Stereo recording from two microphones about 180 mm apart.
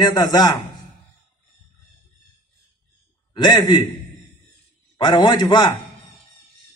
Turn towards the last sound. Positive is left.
turn(degrees=25)  # may be behind; listen again after turning